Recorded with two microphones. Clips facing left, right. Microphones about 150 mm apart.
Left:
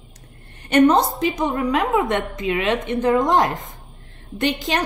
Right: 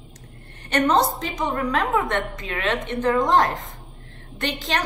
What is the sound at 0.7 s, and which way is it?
A woman's voice, 15° left (ahead or behind).